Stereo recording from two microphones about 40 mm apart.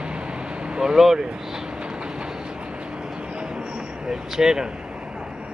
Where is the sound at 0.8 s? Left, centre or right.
Centre.